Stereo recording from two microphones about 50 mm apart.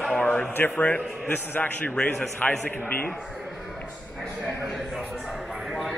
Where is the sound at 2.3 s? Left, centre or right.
Left.